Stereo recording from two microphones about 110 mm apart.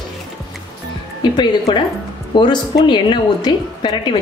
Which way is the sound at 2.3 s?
45° left (ahead or behind).